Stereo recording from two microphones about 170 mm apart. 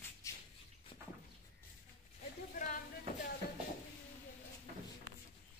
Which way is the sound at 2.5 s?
50° left (ahead or behind).